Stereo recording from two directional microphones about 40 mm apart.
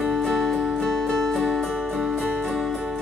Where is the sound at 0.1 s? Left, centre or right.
Centre.